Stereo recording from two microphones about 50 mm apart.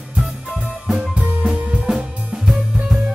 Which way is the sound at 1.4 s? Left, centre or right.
Right.